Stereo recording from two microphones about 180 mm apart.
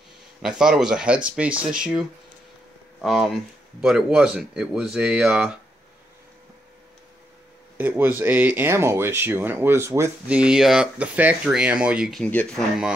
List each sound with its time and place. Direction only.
0.4 s speech: 5° right (ahead or behind)
7.7 s speech: 10° right (ahead or behind)